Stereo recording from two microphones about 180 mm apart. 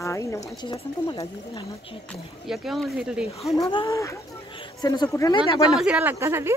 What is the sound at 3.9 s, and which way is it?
A woman's voice, 15° left (ahead or behind).